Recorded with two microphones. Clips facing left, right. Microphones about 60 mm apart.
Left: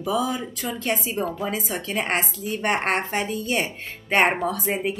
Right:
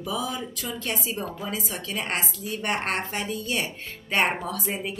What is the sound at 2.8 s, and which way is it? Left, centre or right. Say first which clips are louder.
A woman's voice: left 5 dB; left.